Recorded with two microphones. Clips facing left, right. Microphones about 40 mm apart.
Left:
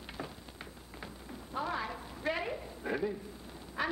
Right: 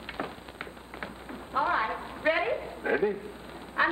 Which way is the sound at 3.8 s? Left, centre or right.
Right.